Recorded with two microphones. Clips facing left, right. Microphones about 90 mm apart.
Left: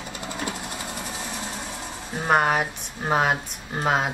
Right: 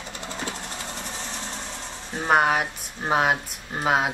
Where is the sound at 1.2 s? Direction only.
10° left (ahead or behind).